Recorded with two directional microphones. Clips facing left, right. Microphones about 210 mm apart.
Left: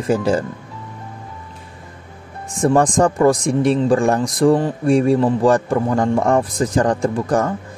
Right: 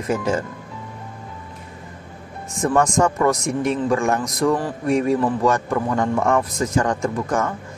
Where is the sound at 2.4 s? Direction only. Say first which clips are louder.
Left 4 dB; 30° left (ahead or behind).